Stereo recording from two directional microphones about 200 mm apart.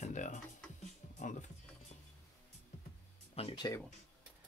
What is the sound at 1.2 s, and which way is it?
Music, 35° left (ahead or behind).